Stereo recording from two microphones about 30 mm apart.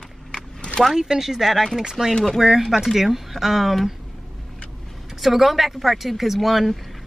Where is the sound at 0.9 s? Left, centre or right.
Centre.